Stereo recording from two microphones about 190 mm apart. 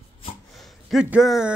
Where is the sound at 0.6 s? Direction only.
Centre (ahead or behind).